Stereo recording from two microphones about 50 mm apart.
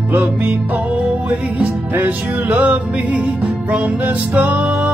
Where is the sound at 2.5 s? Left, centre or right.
Right.